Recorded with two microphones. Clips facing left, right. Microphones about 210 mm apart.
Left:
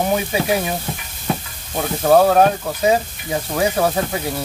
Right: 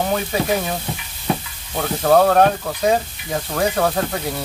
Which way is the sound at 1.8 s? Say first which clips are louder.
Left 1 dB; 5° left (ahead or behind).